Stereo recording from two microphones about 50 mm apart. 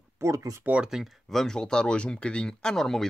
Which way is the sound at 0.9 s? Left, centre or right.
Centre.